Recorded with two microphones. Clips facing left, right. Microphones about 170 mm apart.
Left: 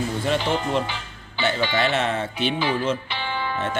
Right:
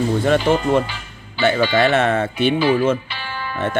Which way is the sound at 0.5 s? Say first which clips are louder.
Right 7 dB; 55° right (ahead or behind).